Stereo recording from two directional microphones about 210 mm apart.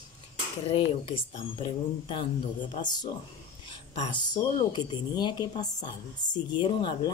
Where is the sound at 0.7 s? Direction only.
25° left (ahead or behind).